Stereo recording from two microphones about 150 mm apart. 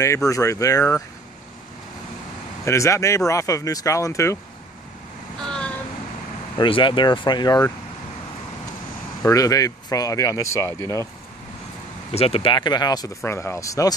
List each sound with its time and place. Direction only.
0.0 s speech: 20° left (ahead or behind)
2.6 s speech: 20° left (ahead or behind)
6.5 s speech: 35° left (ahead or behind)
9.2 s speech: 20° left (ahead or behind)
12.1 s speech: 40° left (ahead or behind); by 13.9 s 20° left (ahead or behind)